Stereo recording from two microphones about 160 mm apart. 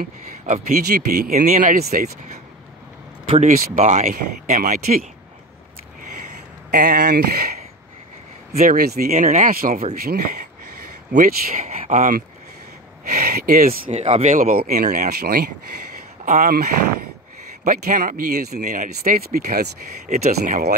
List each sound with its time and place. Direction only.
0.0 s speech: 60° right (ahead or behind)
1.3 s speech: 55° right (ahead or behind)
3.3 s speech: 45° right (ahead or behind)
6.7 s speech: 75° right (ahead or behind)
8.5 s speech: 70° right (ahead or behind)
10.0 s speech: 75° right (ahead or behind)
11.1 s speech: 55° right (ahead or behind)
13.1 s speech: 65° right (ahead or behind)
13.8 s speech: 40° right (ahead or behind)
14.3 s speech: 60° right (ahead or behind)
16.3 s speech: 60° right (ahead or behind)
17.6 s speech: 60° right (ahead or behind); by 18.6 s 75° right (ahead or behind)
18.6 s speech: 55° right (ahead or behind); by 19.7 s 75° right (ahead or behind)
20.1 s speech: 45° right (ahead or behind)